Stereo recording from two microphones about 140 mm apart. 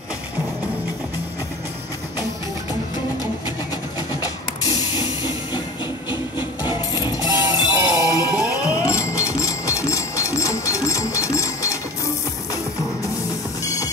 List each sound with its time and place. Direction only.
4.1 s music: 25° left (ahead or behind)
6.0 s a sound: 15° right (ahead or behind)
7.0 s music: 25° left (ahead or behind)
7.2 s music: 25° right (ahead or behind)
8.0 s music: 25° left (ahead or behind)